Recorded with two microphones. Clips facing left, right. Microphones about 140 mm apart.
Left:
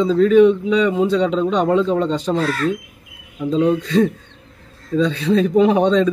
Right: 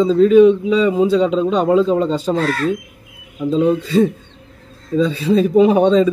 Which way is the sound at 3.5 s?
5° right (ahead or behind).